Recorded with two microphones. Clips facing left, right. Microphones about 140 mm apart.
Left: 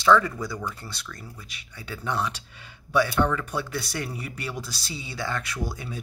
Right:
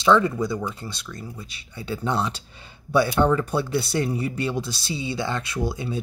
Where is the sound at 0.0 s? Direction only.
20° right (ahead or behind).